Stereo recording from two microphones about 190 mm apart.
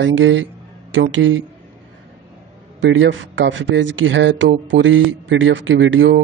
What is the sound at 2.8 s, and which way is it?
Speech, 75° right (ahead or behind).